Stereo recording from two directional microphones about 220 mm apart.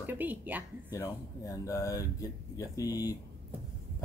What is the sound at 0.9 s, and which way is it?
Speech, 15° left (ahead or behind).